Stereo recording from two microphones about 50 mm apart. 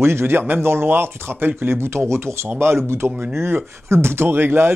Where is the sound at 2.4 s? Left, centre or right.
Right.